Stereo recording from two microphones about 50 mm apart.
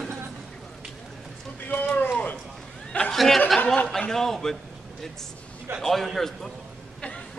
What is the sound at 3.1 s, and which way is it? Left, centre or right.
A man's voice, centre.